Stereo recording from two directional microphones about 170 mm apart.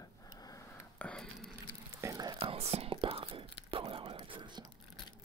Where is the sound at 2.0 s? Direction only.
20° right (ahead or behind).